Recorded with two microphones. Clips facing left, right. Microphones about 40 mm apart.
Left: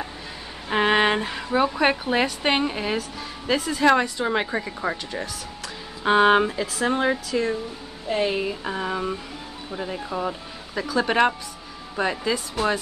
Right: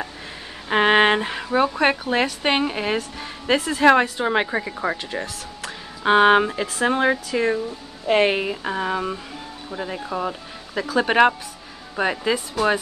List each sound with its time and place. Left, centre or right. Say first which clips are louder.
0.7 s speech: right 3 dB; centre
3.5 s speech: right 3 dB; right
3.8 s speech: right 3 dB; centre
8.1 s a woman's voice: right 7 dB; right
8.5 s speech: right 3 dB; centre